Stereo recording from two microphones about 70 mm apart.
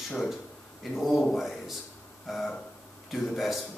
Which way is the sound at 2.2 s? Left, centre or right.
Centre.